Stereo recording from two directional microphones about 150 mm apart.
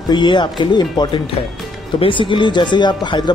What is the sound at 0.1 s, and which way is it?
Speech, 30° left (ahead or behind).